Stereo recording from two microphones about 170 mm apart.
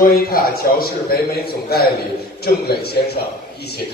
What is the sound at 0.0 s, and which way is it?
A man's voice, 60° left (ahead or behind).